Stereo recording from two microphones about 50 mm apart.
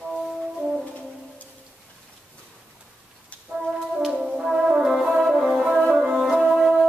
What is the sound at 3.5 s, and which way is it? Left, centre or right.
Brass instrument, centre.